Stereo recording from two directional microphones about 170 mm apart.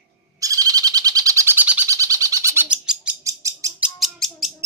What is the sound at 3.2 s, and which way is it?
Bird, 20° right (ahead or behind).